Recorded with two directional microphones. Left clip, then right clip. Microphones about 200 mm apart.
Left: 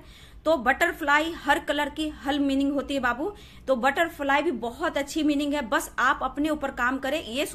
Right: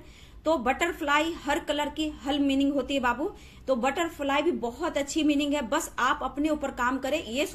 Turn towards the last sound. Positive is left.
turn(degrees=15)  # may be behind; listen again after turning